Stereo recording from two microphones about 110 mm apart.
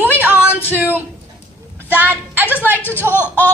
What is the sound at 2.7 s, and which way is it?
Speech, 15° left (ahead or behind).